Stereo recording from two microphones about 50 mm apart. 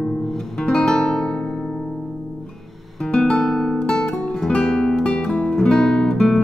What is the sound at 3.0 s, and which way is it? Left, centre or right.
Guitar, centre.